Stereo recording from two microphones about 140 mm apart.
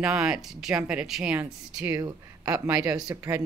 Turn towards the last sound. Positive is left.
turn(degrees=-25)  # may be behind; listen again after turning